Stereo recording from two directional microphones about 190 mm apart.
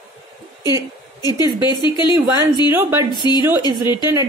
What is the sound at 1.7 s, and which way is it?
Speech, 25° left (ahead or behind).